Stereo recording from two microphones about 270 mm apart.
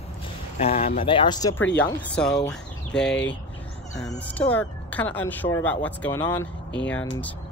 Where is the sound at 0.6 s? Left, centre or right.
Left.